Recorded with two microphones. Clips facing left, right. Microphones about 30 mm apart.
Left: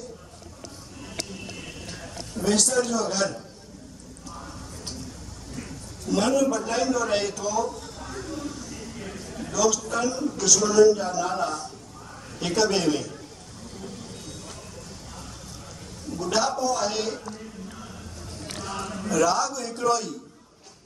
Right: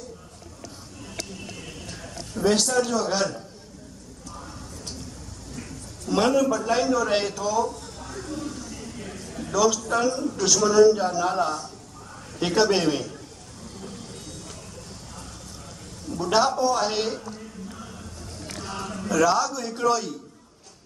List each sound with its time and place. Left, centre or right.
2.6 s a man's voice: centre
6.0 s a man's voice: centre
7.6 s a sound: centre
9.5 s a man's voice: centre
16.2 s a man's voice: right
17.2 s a sound: centre
19.1 s a man's voice: centre